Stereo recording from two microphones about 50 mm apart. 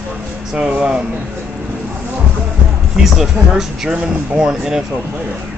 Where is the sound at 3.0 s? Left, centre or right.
Centre.